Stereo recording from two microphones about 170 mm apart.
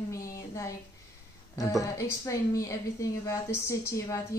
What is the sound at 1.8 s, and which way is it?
A woman's voice, 20° left (ahead or behind).